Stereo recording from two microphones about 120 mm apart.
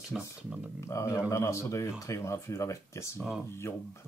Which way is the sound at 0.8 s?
25° left (ahead or behind).